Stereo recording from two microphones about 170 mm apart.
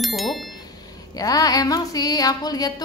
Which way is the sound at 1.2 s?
20° left (ahead or behind).